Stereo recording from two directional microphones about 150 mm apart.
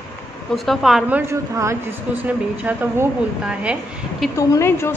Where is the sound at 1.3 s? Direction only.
20° right (ahead or behind).